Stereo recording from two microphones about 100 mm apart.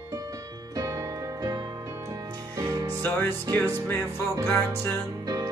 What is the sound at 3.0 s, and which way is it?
Music, 20° left (ahead or behind).